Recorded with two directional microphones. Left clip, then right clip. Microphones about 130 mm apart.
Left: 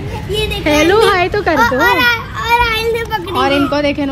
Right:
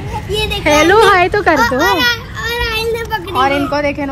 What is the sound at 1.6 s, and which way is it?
Children playing, 5° left (ahead or behind).